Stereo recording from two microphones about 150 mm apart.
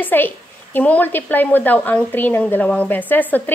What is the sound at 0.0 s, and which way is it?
A woman's voice, 10° left (ahead or behind).